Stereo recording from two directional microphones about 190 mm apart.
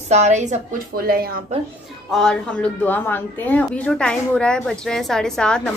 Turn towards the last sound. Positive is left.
turn(degrees=5)  # may be behind; listen again after turning